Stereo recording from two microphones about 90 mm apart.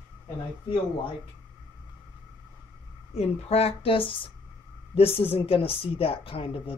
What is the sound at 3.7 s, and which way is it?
Speech, 90° left.